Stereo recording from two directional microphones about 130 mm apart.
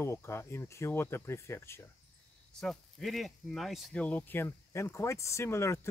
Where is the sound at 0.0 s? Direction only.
20° left (ahead or behind).